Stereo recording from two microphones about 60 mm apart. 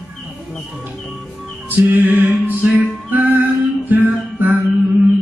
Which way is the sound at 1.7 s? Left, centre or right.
Right.